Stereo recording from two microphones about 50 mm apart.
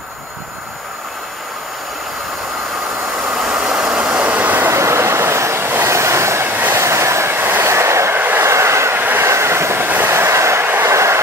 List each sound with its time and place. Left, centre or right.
3.1 s vehicle: centre; by 4.6 s right
4.6 s train: right
5.9 s train: right
6.4 s train: right
6.7 s train: right
7.3 s train: right
7.6 s train: right
8.2 s train: right
8.5 s train: right
9.2 s vehicle: right
9.8 s train: right
10.1 s train: right
10.9 s train: right